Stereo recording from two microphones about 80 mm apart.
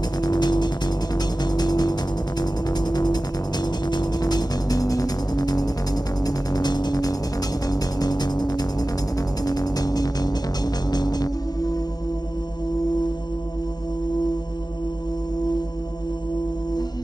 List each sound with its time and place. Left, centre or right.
0.2 s music: left